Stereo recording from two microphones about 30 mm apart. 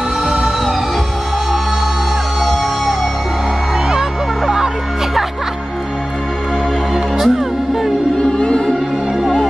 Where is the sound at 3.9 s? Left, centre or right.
Centre.